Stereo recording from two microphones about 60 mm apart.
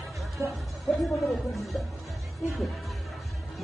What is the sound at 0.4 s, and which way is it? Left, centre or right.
Speech, right.